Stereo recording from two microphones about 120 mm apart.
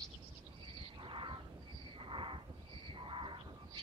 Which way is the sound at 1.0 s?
45° right (ahead or behind).